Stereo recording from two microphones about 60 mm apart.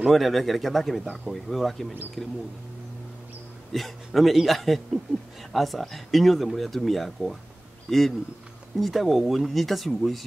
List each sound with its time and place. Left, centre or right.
0.0 s speech: centre
3.7 s speech: centre